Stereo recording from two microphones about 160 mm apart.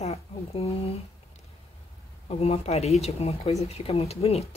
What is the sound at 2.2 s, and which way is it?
A woman's voice, 40° left (ahead or behind).